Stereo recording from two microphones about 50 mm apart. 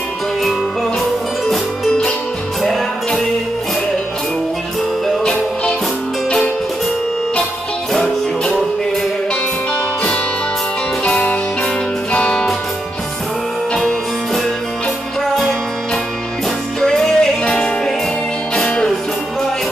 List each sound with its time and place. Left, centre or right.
5.0 s music: centre
12.1 s music: left
13.7 s music: centre
16.8 s music: centre
18.5 s music: centre